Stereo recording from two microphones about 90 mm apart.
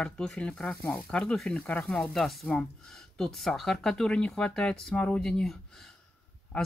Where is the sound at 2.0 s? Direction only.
5° left (ahead or behind).